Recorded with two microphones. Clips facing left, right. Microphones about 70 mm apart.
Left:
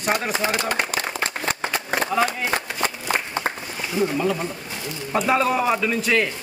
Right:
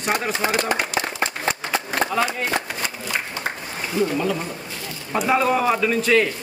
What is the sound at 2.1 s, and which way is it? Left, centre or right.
Speech, centre.